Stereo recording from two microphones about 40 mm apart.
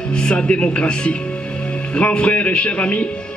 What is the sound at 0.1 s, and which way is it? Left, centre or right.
A man's voice, left.